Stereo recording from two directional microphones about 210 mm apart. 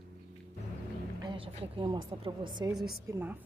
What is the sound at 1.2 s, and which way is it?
A woman's voice, 20° right (ahead or behind).